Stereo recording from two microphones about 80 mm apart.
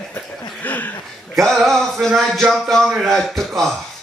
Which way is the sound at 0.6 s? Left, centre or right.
Left.